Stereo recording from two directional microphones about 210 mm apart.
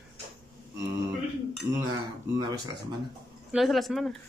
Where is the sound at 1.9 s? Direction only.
15° right (ahead or behind).